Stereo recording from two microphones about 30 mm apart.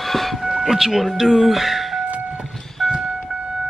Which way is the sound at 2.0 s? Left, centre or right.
Right.